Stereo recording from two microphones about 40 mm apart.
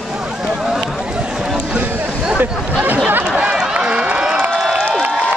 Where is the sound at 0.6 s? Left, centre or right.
Centre.